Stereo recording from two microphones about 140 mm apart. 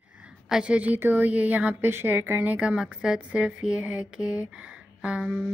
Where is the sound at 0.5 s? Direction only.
5° right (ahead or behind).